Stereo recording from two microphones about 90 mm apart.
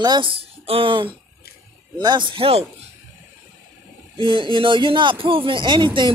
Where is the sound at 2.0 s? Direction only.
60° right (ahead or behind); by 2.5 s 75° right (ahead or behind).